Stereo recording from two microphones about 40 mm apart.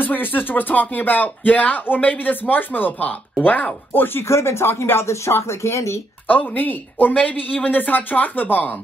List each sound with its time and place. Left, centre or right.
0.0 s speech: left
3.9 s speech: left
6.2 s speech: left